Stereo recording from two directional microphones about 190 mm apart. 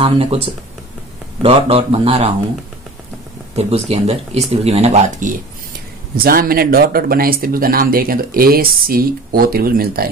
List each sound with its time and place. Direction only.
0.0 s speech: 25° right (ahead or behind)
1.4 s speech: 30° right (ahead or behind)
3.5 s speech: 35° right (ahead or behind)
6.1 s speech: 50° right (ahead or behind)